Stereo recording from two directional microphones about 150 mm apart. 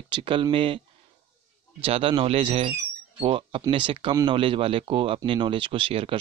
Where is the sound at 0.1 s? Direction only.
35° right (ahead or behind).